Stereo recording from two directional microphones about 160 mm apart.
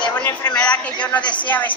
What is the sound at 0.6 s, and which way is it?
A man's voice, 5° left (ahead or behind).